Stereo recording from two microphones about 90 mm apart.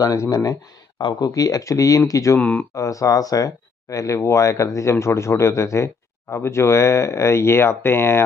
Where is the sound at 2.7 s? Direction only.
40° left (ahead or behind).